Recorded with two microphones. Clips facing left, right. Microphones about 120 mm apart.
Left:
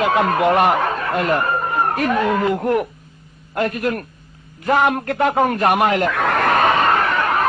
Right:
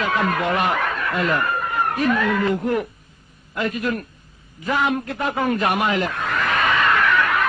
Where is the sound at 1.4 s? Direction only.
35° left (ahead or behind).